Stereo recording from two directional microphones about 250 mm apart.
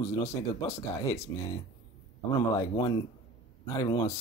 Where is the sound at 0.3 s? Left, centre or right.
Centre.